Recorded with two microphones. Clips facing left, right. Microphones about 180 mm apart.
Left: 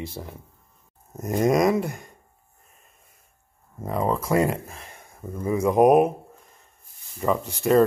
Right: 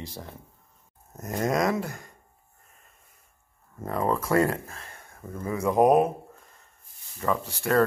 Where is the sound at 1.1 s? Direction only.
15° left (ahead or behind).